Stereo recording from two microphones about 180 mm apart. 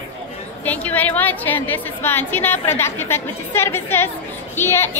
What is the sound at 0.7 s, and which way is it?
A woman's voice, 10° left (ahead or behind).